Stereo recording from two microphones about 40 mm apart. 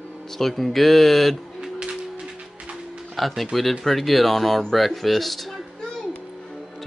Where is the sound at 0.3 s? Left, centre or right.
Centre.